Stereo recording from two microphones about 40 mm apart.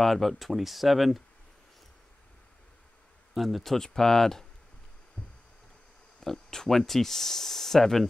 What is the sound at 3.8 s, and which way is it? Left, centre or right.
Speech, centre.